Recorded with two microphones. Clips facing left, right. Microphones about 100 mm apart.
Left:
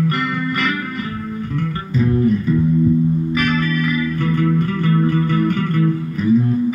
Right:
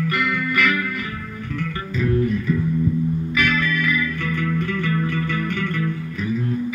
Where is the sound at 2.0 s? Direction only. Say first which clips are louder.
Left 4 dB; 35° left (ahead or behind).